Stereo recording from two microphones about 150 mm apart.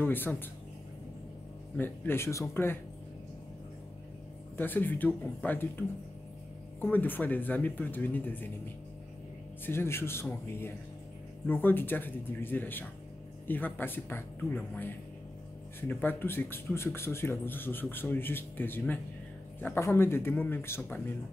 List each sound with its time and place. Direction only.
0.0 s speech: 15° left (ahead or behind)
1.8 s speech: 15° left (ahead or behind)
4.6 s speech: 10° left (ahead or behind)
9.7 s speech: 15° left (ahead or behind)
11.4 s speech: 15° left (ahead or behind)